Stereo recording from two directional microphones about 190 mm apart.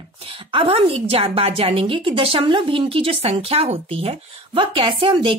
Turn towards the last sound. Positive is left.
turn(degrees=-25)  # may be behind; listen again after turning